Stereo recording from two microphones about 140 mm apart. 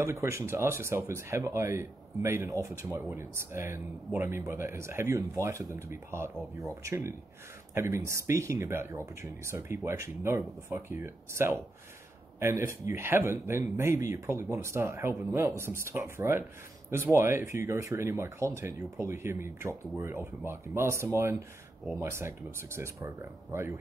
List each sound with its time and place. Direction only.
0.0 s speech: 20° right (ahead or behind)